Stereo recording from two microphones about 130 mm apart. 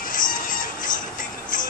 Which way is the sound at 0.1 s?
90° left.